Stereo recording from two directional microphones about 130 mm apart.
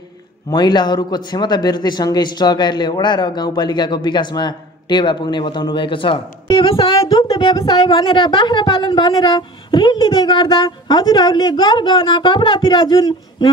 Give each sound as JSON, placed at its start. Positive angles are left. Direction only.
{"t": 0.5, "sound": "a man's voice", "side_deg": 35}
{"t": 7.1, "sound": "a man's voice", "side_deg": 35}